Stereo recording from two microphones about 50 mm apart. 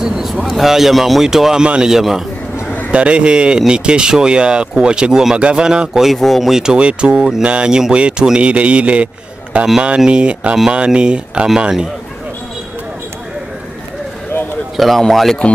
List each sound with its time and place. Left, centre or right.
0.0 s a man's voice: centre
2.0 s speech: centre
2.9 s speech: right
6.1 s speech: centre
14.8 s speech: centre